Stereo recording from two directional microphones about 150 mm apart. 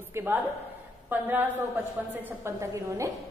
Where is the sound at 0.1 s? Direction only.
15° right (ahead or behind).